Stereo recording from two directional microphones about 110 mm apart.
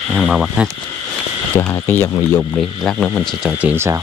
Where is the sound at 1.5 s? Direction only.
20° left (ahead or behind).